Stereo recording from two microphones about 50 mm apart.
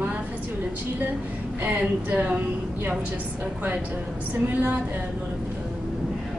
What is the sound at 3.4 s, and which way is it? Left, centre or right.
A woman's voice, right.